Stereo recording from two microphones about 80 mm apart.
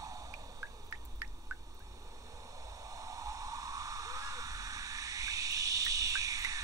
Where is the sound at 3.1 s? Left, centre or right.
Right.